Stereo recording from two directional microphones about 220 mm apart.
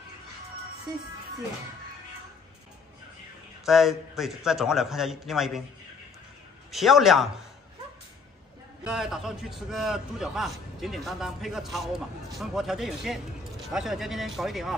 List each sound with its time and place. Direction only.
3.6 s a man's voice: centre (ahead or behind)
6.7 s a man's voice: centre (ahead or behind)
8.8 s a man's voice: centre (ahead or behind)